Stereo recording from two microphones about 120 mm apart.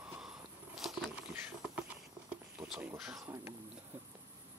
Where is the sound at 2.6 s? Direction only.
30° right (ahead or behind).